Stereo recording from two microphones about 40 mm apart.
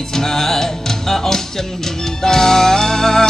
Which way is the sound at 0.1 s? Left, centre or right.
Centre.